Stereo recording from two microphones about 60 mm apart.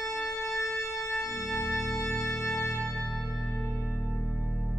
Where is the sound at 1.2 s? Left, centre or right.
Left.